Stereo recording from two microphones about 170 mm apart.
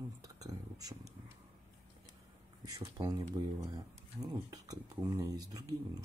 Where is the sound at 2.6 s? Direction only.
20° right (ahead or behind).